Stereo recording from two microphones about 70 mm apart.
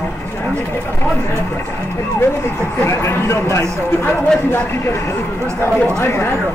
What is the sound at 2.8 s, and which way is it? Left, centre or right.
Speech, left.